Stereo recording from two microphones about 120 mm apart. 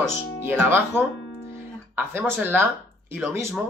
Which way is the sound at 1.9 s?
20° right (ahead or behind).